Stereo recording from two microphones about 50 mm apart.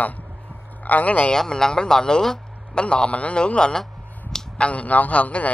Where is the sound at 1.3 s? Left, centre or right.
Centre.